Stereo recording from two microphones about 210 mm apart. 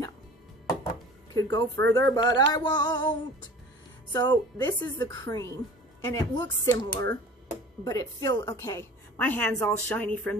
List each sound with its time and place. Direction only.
1.3 s a woman's voice: 15° left (ahead or behind)
2.0 s a sound: 20° left (ahead or behind)
5.9 s music: 10° left (ahead or behind)
6.3 s a woman's voice: 20° left (ahead or behind)